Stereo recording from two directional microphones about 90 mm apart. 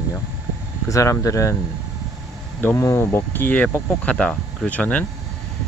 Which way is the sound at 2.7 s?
30° left (ahead or behind).